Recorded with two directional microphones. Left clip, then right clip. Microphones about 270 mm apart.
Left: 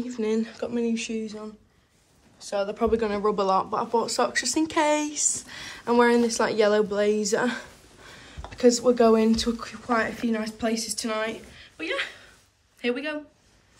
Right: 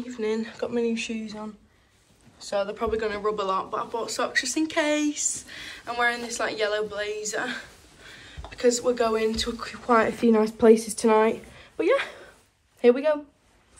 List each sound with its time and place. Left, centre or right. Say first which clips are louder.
0.0 s speech: left 1 dB; centre
9.8 s speech: right 5 dB; centre